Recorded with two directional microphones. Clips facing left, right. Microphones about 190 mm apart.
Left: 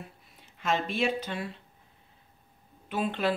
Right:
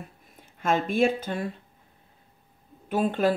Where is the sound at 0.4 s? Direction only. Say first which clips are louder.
Right 4 dB; 50° right (ahead or behind).